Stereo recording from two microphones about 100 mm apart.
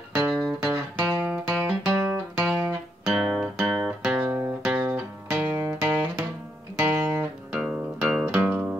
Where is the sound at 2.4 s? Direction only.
10° right (ahead or behind).